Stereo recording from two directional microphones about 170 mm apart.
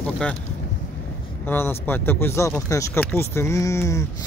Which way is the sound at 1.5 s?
15° left (ahead or behind).